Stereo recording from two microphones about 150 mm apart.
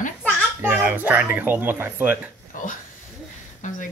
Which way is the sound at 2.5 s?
60° left (ahead or behind).